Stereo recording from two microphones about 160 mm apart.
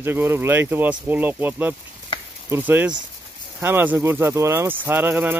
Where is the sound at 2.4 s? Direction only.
10° right (ahead or behind).